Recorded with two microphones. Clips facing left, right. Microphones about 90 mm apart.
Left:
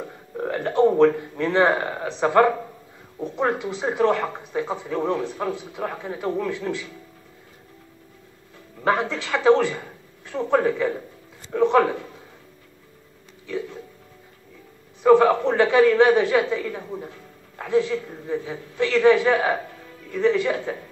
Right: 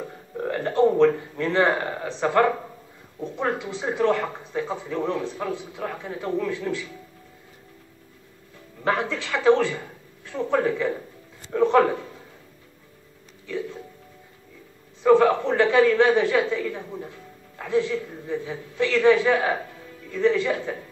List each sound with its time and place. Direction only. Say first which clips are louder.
0.4 s a sound: left 1 dB; 10° left (ahead or behind)
0.9 s speech: left 1 dB; 10° left (ahead or behind)
8.8 s a man's voice: left 2 dB; 25° left (ahead or behind)
15.0 s speech: left 2 dB; 15° left (ahead or behind)
20.1 s speech: left 1 dB; 15° left (ahead or behind)